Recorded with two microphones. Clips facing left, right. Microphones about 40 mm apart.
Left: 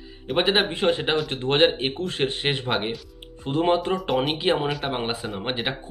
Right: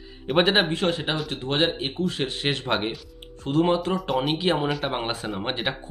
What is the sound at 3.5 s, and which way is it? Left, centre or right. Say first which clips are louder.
Speech: even; left.